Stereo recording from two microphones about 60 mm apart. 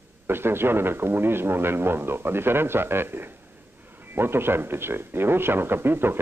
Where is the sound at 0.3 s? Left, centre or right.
Right.